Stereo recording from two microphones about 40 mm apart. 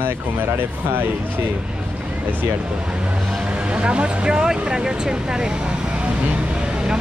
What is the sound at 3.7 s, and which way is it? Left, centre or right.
Speech, right.